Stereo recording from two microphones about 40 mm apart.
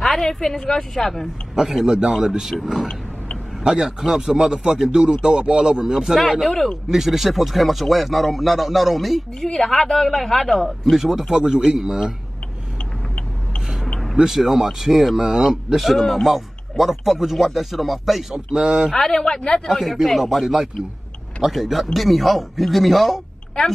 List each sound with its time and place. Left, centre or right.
0.0 s a woman's voice: centre
1.5 s a man's voice: centre
5.9 s a man's voice: centre
11.3 s speech: centre
13.1 s a sound: left
14.2 s a man's voice: centre
18.3 s speech: centre
18.9 s speech: centre
19.4 s speech: centre
19.8 s a man's voice: centre